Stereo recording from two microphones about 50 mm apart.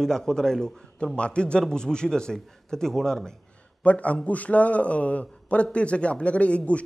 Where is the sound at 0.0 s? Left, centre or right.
Centre.